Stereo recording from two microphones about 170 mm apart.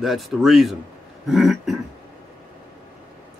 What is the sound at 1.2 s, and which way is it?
Throat clearing, centre (ahead or behind).